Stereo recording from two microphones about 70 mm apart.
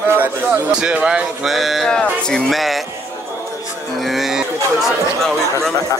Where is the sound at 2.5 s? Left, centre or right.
Centre.